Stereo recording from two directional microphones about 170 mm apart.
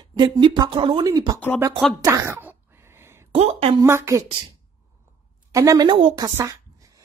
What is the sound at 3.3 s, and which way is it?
Speech, 40° right (ahead or behind).